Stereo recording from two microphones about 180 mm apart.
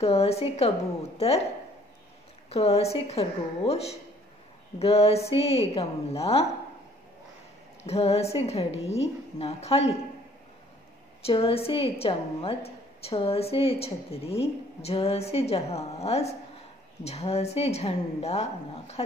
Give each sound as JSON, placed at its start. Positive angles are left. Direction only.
{"t": 0.0, "sound": "a woman's voice", "side_deg": 35}
{"t": 2.5, "sound": "a woman's voice", "side_deg": 35}
{"t": 7.8, "sound": "a woman's voice", "side_deg": 35}
{"t": 11.2, "sound": "a woman's voice", "side_deg": 30}